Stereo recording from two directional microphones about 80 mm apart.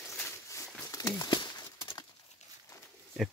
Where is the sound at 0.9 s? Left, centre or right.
Left.